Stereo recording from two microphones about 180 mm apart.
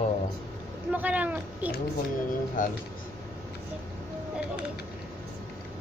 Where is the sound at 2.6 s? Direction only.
50° left (ahead or behind).